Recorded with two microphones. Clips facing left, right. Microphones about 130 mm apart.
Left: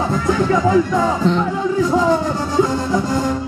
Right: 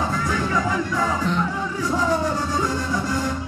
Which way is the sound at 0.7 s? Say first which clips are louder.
Left 8 dB; 30° left (ahead or behind).